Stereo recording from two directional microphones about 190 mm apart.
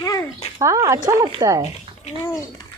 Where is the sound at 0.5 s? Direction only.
15° right (ahead or behind).